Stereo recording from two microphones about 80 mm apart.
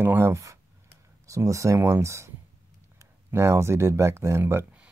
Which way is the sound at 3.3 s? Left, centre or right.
Right.